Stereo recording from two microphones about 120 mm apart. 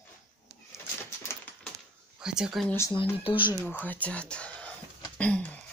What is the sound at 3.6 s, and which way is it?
Speech, 15° left (ahead or behind).